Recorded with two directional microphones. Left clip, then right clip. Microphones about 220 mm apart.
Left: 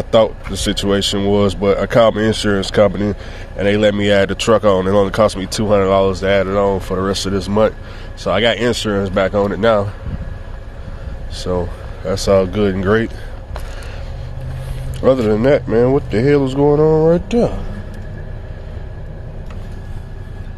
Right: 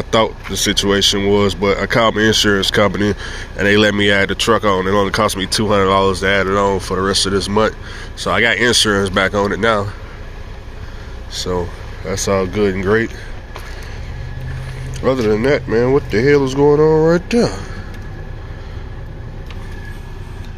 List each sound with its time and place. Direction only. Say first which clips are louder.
0.1 s speech: left 2 dB; 10° left (ahead or behind)
11.3 s speech: even; 15° left (ahead or behind)
15.0 s speech: left 2 dB; 15° left (ahead or behind)